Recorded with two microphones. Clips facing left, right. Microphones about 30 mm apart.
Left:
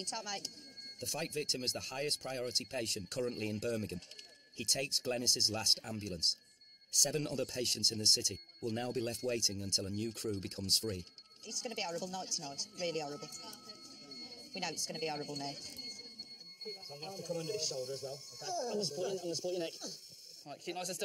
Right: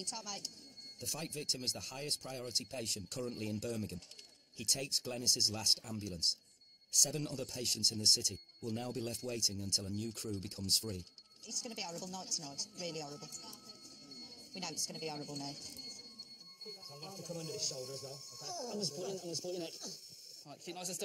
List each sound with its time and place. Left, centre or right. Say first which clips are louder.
0.0 s speech: left 3 dB; left
18.4 s speech: left 6 dB; left
18.7 s speech: left 2 dB; left